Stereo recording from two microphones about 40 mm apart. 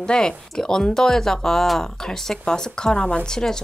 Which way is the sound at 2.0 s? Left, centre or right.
Centre.